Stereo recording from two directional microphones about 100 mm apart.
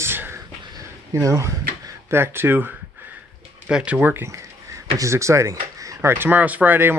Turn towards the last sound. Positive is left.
turn(degrees=-20)  # may be behind; listen again after turning